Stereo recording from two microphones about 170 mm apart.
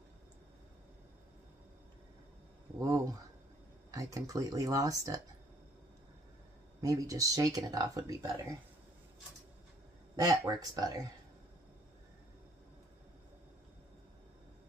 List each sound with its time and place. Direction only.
2.8 s a sound: 20° right (ahead or behind)
3.9 s speech: 20° right (ahead or behind)
6.8 s speech: 20° right (ahead or behind)
10.2 s speech: 20° right (ahead or behind)